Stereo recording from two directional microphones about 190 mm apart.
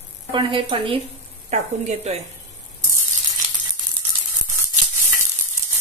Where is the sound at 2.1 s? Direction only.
35° right (ahead or behind).